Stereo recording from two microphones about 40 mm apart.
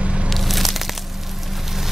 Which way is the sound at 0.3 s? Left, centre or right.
Centre.